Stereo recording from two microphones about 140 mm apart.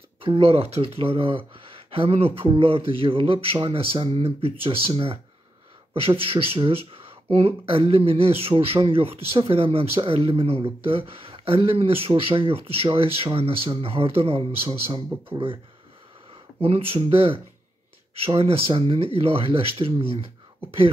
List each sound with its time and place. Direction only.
0.2 s speech: 40° right (ahead or behind)
16.6 s speech: 40° right (ahead or behind)